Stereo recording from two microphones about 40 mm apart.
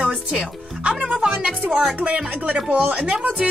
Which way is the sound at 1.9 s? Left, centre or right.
Right.